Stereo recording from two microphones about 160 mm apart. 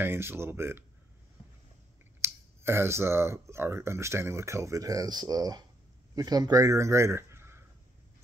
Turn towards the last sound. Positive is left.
turn(degrees=-15)  # may be behind; listen again after turning